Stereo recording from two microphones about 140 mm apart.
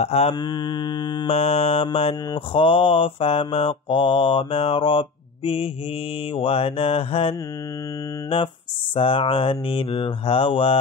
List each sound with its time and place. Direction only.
0.0 s mantra: 50° left (ahead or behind)
0.3 s mantra: 30° left (ahead or behind)
1.2 s mantra: 45° left (ahead or behind)
8.9 s mantra: 40° left (ahead or behind)